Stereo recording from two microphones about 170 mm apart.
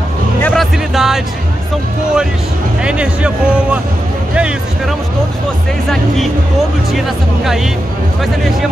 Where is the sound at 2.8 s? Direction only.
5° right (ahead or behind).